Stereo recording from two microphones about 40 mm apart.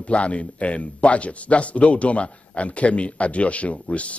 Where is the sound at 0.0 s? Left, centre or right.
Left.